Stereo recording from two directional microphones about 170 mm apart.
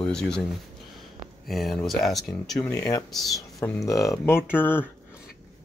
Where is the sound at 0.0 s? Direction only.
5° left (ahead or behind).